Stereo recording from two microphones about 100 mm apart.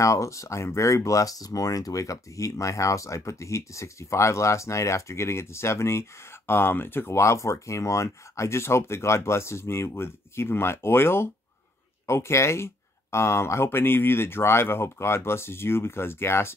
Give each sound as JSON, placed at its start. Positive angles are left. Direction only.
{"t": 0.0, "sound": "speech", "side_deg": 30}